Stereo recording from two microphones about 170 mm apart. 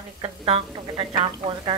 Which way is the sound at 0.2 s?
30° right (ahead or behind).